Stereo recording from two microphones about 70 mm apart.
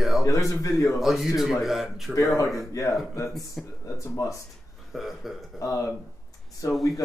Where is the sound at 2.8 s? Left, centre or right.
Left.